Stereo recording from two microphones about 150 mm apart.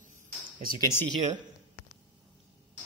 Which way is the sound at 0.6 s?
75° right (ahead or behind).